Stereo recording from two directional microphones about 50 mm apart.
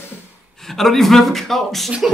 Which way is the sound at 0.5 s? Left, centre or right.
Centre.